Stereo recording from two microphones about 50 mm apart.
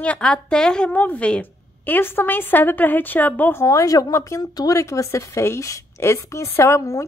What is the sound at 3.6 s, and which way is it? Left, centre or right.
Speech, left.